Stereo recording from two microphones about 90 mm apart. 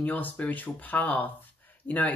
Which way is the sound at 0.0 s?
20° left (ahead or behind).